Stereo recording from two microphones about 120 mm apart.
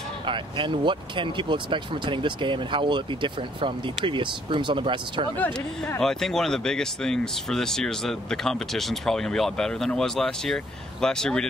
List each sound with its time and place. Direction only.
0.3 s speech: 40° right (ahead or behind)
5.9 s speech: 5° left (ahead or behind)